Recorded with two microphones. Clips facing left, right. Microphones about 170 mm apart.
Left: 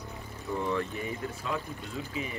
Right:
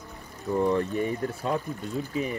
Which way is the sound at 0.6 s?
45° right (ahead or behind).